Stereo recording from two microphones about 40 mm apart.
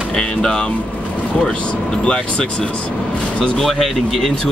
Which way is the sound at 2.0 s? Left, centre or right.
Left.